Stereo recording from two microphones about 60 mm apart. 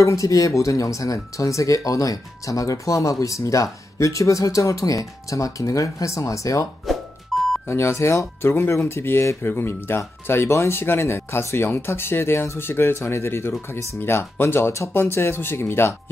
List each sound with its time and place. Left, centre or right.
0.0 s speech: left
6.9 s music: centre
7.6 s speech: left